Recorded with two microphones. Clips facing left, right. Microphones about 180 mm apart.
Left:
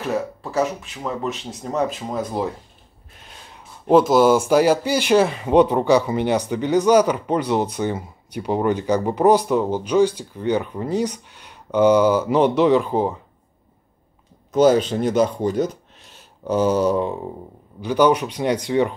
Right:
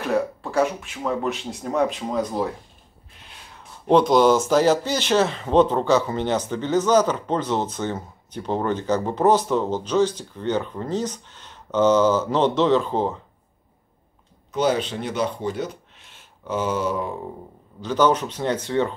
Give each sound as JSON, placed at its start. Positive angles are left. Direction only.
{"t": 0.1, "sound": "speech", "side_deg": 0}
{"t": 3.8, "sound": "speech", "side_deg": 5}
{"t": 14.5, "sound": "speech", "side_deg": 45}
{"t": 17.8, "sound": "speech", "side_deg": 10}